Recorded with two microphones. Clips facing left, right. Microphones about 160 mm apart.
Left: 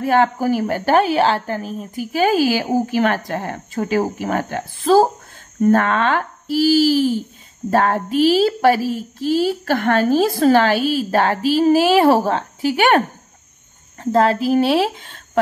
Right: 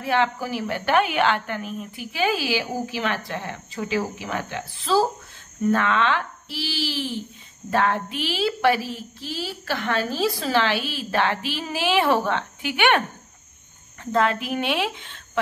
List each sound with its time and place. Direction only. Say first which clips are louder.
0.0 s a woman's voice: left 7 dB; 45° left (ahead or behind)
14.1 s a woman's voice: left 7 dB; 35° left (ahead or behind)